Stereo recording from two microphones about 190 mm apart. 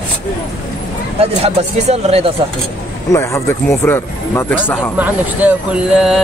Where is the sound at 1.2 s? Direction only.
30° right (ahead or behind).